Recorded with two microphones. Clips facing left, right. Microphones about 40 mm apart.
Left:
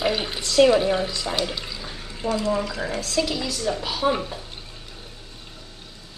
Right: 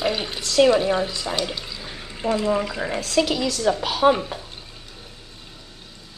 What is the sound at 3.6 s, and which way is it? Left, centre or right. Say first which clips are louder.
Speech: right 6 dB; right.